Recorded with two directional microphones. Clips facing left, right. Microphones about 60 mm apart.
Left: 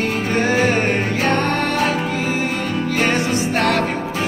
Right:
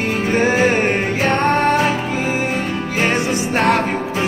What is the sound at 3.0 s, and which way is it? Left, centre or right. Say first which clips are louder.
Music: right 2 dB; centre.